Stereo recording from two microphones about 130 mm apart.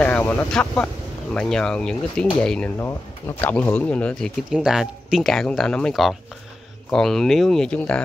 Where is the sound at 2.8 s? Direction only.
20° left (ahead or behind).